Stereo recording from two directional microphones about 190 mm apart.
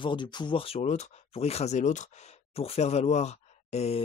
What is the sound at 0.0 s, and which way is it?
Speech, 25° left (ahead or behind).